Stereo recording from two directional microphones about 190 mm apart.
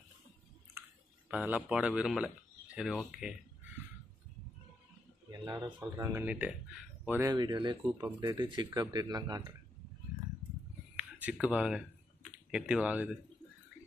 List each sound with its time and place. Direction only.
1.3 s speech: 5° right (ahead or behind)
5.3 s speech: 20° right (ahead or behind)
11.0 s a sound: 10° right (ahead or behind)
11.3 s speech: 5° right (ahead or behind)